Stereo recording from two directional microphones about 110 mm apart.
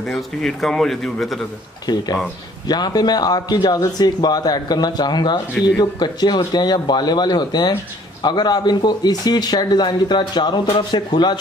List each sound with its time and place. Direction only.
0.1 s speech: 5° left (ahead or behind)
2.7 s speech: 40° left (ahead or behind)